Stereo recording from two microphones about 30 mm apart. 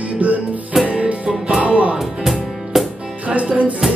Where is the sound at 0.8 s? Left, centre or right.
Right.